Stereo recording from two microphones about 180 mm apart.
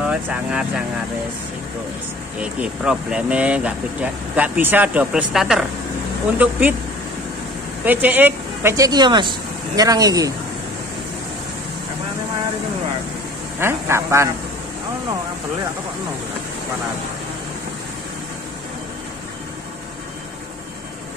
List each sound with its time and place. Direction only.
0.0 s speech: 5° right (ahead or behind)
2.4 s speech: 5° right (ahead or behind)
7.8 s speech: 10° right (ahead or behind)
13.6 s speech: 15° right (ahead or behind)